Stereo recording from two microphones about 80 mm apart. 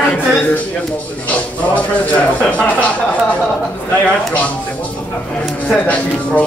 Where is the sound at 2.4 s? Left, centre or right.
Centre.